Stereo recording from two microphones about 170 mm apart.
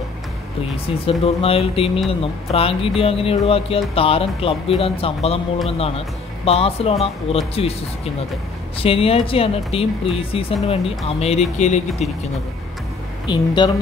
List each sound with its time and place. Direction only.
0.8 s speech: 35° left (ahead or behind)
13.3 s speech: 25° left (ahead or behind)